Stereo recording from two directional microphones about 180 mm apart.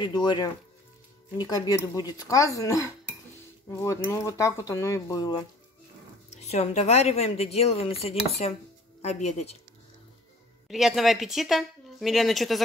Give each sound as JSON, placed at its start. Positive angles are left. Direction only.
{"t": 0.0, "sound": "speech", "side_deg": 25}
{"t": 6.3, "sound": "a woman's voice", "side_deg": 35}
{"t": 10.7, "sound": "speech", "side_deg": 0}